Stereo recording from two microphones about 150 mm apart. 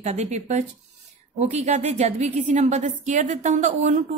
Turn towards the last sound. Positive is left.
turn(degrees=-50)  # may be behind; listen again after turning